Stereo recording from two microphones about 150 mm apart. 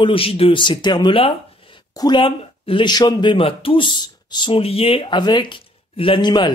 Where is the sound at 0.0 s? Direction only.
40° left (ahead or behind).